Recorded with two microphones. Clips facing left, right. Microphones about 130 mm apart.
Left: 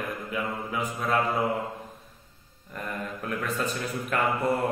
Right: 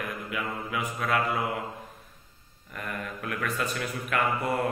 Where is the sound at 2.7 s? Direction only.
30° left (ahead or behind).